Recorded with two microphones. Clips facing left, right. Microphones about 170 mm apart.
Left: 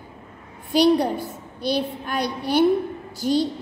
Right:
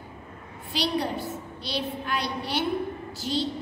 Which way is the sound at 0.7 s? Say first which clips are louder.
Left 10 dB; 45° left (ahead or behind).